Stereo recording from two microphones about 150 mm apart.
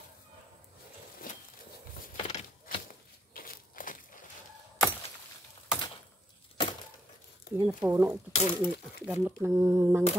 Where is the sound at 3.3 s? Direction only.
70° left (ahead or behind).